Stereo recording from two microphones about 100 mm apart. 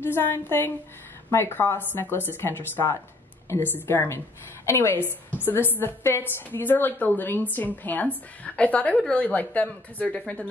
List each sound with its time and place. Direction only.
0.0 s a woman's voice: 25° left (ahead or behind)